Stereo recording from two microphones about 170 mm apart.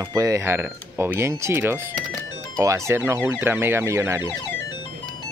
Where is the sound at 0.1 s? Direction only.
20° right (ahead or behind).